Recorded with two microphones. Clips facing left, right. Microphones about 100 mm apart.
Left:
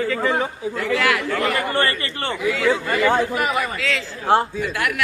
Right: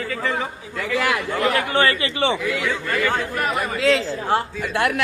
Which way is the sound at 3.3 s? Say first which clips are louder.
Left 2 dB; 5° left (ahead or behind).